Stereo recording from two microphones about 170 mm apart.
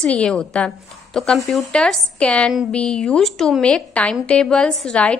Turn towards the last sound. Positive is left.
turn(degrees=5)  # may be behind; listen again after turning